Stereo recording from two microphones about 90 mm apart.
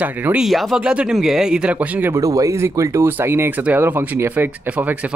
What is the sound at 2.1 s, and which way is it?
A man's voice, 40° right (ahead or behind).